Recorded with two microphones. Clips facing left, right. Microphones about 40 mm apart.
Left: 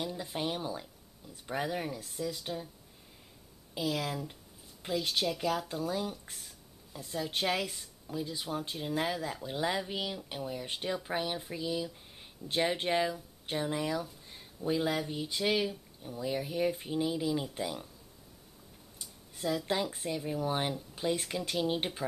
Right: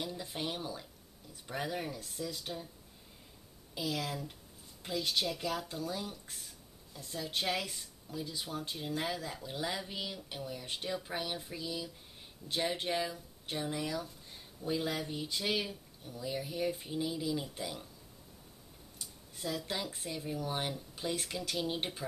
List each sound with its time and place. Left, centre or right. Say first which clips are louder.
0.0 s speech: left 3 dB; centre
3.7 s speech: left 3 dB; centre
12.4 s speech: left 4 dB; left
18.9 s a sound: left 3 dB; centre
19.7 s speech: left 6 dB; centre